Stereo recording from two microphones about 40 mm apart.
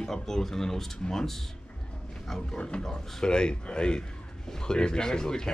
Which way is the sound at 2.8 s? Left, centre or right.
Left.